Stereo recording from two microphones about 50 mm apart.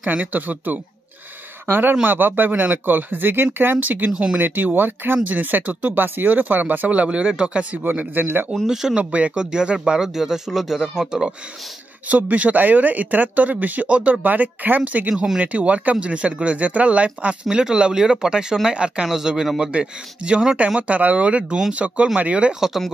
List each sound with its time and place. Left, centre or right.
0.0 s speech: right
4.1 s speech: centre
4.4 s speech: right
7.8 s speech: right
8.9 s speech: right
12.1 s speech: right